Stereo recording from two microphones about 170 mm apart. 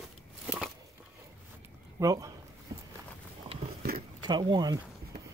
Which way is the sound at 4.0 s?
25° right (ahead or behind).